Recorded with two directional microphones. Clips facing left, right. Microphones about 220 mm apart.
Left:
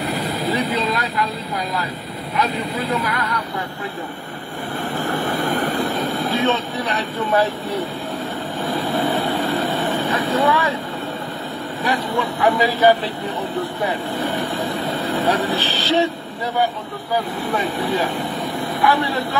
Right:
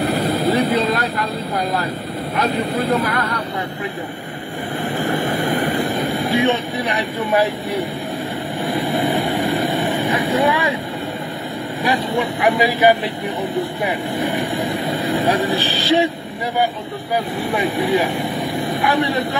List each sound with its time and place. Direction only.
0.0 s vehicle: 55° right (ahead or behind)
0.7 s vehicle: 45° right (ahead or behind)
2.3 s speech: 50° right (ahead or behind)
4.8 s vehicle: 15° right (ahead or behind)
11.8 s speech: 15° right (ahead or behind)
17.5 s speech: 15° right (ahead or behind)